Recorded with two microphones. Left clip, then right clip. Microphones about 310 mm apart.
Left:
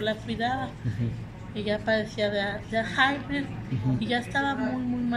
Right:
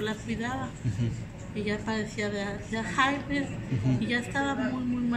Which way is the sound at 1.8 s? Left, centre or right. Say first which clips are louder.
Left 6 dB; centre.